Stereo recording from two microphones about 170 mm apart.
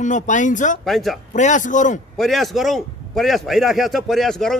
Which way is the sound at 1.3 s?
45° left (ahead or behind).